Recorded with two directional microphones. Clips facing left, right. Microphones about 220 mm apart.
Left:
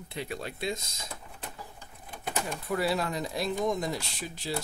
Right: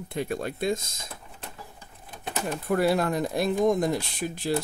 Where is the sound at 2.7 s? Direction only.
50° right (ahead or behind).